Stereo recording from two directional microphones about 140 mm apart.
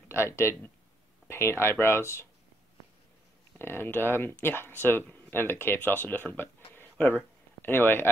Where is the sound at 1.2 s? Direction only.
15° left (ahead or behind).